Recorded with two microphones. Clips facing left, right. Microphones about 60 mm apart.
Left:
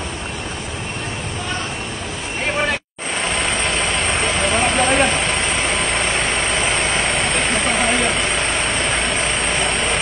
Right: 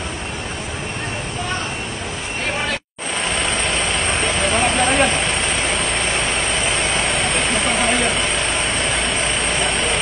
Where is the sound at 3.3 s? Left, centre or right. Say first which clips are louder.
Even; left.